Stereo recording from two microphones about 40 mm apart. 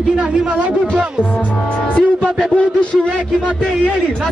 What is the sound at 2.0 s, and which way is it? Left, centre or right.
A man's voice, left.